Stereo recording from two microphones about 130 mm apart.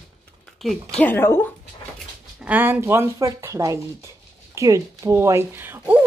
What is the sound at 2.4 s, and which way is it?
Speech, 15° right (ahead or behind).